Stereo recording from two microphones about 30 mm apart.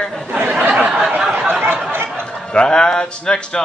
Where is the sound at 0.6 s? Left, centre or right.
Right.